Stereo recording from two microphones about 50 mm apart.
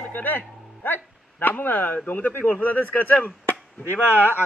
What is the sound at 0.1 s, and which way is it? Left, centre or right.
A man's voice, left.